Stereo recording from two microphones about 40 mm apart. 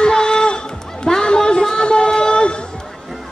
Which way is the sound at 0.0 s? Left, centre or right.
Centre.